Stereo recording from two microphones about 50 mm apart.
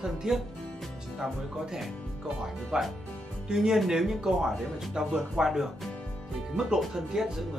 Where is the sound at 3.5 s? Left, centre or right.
Centre.